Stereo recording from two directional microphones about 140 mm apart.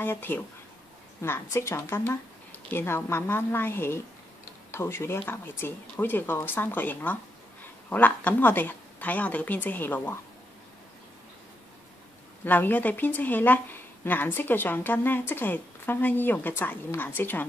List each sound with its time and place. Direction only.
0.0 s a woman's voice: 15° left (ahead or behind)
12.4 s a woman's voice: 10° left (ahead or behind)